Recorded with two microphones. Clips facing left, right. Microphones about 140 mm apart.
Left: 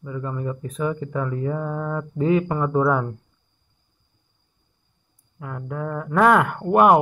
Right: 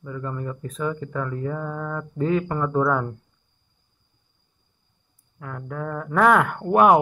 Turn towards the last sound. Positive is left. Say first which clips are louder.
# left 1 dB
turn(degrees=5)  # may be behind; listen again after turning